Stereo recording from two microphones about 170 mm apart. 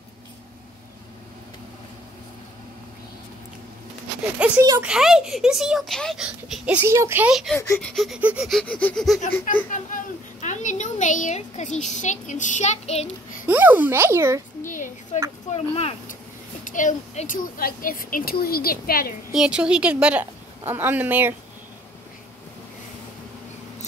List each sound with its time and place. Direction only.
4.6 s a woman's voice: 15° right (ahead or behind)
4.8 s speech: 5° right (ahead or behind)
7.5 s speech: 15° left (ahead or behind)
7.9 s speech: centre (ahead or behind)
9.5 s a woman's voice: 50° left (ahead or behind)
13.5 s a woman's voice: 10° right (ahead or behind)
15.5 s speech: 35° left (ahead or behind)
16.6 s a woman's voice: 50° left (ahead or behind)
19.3 s a woman's voice: 5° right (ahead or behind)